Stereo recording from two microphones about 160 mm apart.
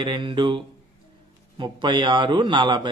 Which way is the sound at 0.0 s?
30° right (ahead or behind).